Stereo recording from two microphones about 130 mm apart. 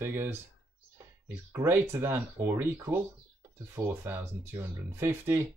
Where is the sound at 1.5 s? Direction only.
20° right (ahead or behind).